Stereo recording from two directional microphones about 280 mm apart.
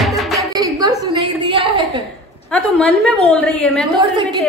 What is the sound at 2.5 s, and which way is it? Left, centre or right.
A man's voice, centre.